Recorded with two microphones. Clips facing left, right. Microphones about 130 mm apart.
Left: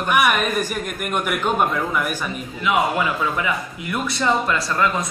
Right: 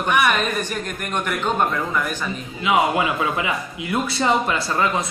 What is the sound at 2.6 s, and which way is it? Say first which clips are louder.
A woman's voice: right 1 dB; 20° right (ahead or behind).